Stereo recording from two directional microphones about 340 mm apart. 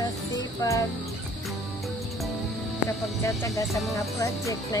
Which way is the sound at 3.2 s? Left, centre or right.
Centre.